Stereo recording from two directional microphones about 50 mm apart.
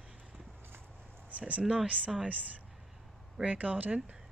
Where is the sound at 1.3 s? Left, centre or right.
Right.